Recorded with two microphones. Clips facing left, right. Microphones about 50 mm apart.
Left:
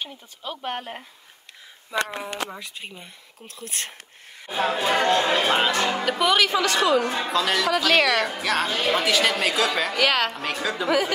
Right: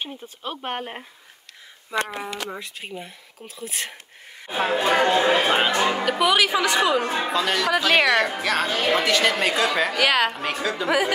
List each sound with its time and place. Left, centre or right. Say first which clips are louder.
0.4 s speech: right 1 dB; right
2.1 s speech: even; centre
4.5 s speech: right 2 dB; centre
5.0 s speech: right 2 dB; centre
6.0 s speech: left 1 dB; centre; by 7.2 s right
7.2 s a woman's voice: even; centre
8.6 s speech: right 1 dB; right
8.9 s a woman's voice: right 1 dB; centre